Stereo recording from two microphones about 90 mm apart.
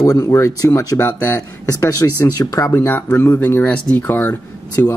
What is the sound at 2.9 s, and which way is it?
Speech, 20° left (ahead or behind).